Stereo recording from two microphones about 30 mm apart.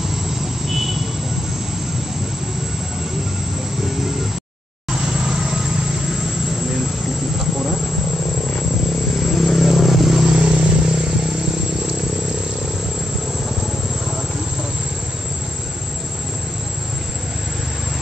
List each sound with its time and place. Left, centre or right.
0.7 s vehicle: centre
3.8 s vehicle: centre
4.9 s vehicle: right
9.1 s vehicle: centre
10.1 s vehicle: right